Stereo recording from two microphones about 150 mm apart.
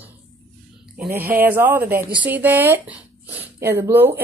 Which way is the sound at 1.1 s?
15° right (ahead or behind).